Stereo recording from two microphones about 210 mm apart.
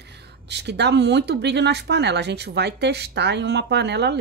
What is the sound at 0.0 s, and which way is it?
Speech, 55° right (ahead or behind).